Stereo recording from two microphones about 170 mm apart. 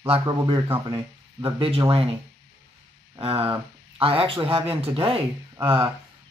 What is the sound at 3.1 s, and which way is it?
Speech, 35° right (ahead or behind).